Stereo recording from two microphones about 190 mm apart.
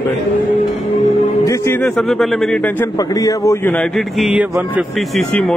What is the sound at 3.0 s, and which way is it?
A man's voice, 20° left (ahead or behind).